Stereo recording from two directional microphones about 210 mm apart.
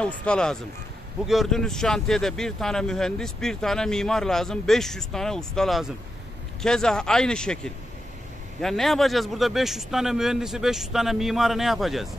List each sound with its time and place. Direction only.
0.0 s speech: 5° left (ahead or behind)